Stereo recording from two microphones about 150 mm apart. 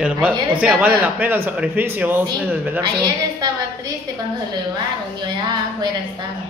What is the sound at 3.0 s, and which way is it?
Speech, 25° right (ahead or behind).